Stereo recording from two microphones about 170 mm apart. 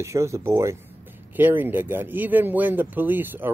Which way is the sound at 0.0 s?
15° right (ahead or behind).